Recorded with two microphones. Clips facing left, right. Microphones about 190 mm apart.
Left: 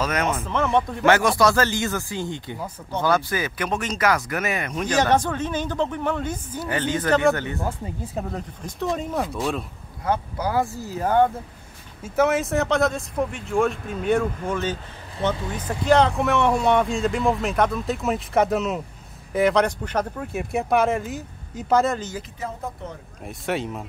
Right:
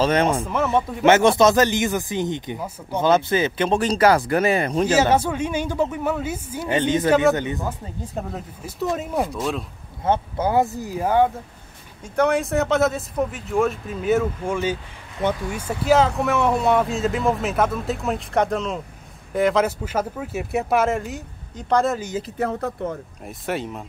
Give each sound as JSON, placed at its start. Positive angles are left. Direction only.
{"t": 0.0, "sound": "speech", "side_deg": -30}
{"t": 0.5, "sound": "speech", "side_deg": -5}
{"t": 1.0, "sound": "speech", "side_deg": -20}
{"t": 5.1, "sound": "a woman's voice", "side_deg": -10}
{"t": 6.6, "sound": "a woman's voice", "side_deg": -20}
{"t": 7.6, "sound": "speech", "side_deg": 5}
{"t": 10.0, "sound": "speech", "side_deg": -25}
{"t": 12.0, "sound": "speech", "side_deg": 5}
{"t": 22.4, "sound": "speech", "side_deg": -75}
{"t": 23.2, "sound": "speech", "side_deg": 0}